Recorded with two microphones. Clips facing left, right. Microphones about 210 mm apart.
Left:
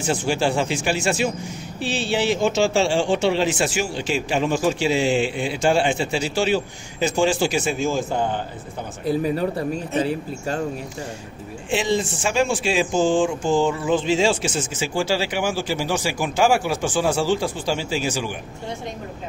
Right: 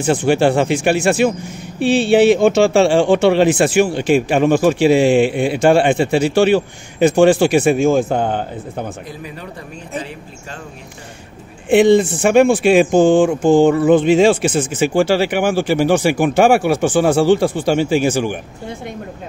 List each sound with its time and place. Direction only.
0.0 s speech: 60° right (ahead or behind)
9.0 s speech: 35° left (ahead or behind)
11.7 s speech: 60° right (ahead or behind)